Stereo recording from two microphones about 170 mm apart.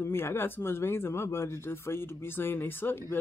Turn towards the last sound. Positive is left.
turn(degrees=15)  # may be behind; listen again after turning